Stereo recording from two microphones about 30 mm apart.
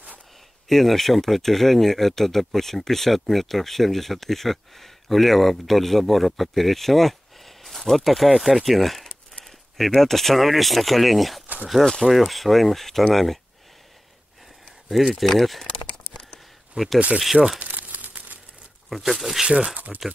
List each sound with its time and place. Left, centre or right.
0.7 s speech: centre
14.9 s speech: centre
15.6 s a sound: left
16.7 s speech: centre
17.6 s crumpling: right
18.9 s speech: centre
19.4 s speech: right